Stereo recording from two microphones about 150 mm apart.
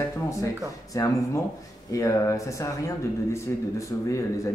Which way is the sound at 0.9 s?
25° left (ahead or behind).